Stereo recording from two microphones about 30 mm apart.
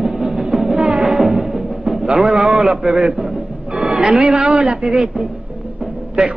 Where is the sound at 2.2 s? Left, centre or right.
Right.